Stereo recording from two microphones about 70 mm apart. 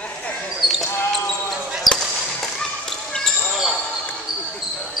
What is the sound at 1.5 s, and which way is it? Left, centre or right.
Basketball bounce, centre.